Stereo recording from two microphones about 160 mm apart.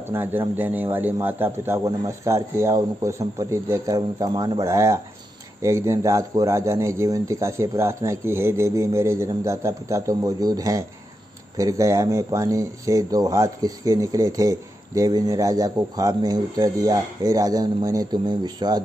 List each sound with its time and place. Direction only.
0.1 s speech: 15° right (ahead or behind)